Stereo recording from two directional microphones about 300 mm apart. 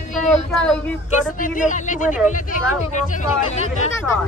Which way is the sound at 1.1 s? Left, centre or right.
Left.